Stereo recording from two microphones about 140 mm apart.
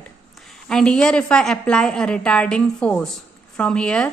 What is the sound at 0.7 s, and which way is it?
A woman's voice, 5° left (ahead or behind).